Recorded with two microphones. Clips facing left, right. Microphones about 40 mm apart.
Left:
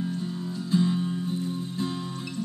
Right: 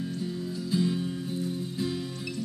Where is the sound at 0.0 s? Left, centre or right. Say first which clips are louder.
Left 2 dB; centre.